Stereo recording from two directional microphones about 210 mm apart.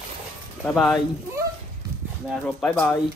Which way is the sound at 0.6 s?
Centre (ahead or behind).